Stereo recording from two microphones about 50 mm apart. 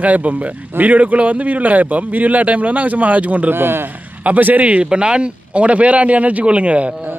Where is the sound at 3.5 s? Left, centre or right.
Right.